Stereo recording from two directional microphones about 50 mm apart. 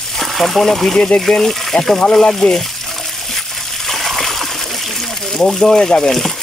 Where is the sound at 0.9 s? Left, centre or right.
Centre.